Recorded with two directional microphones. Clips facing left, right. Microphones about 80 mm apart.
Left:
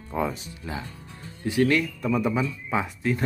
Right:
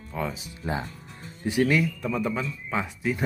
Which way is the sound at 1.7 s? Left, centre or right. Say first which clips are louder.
Even; centre.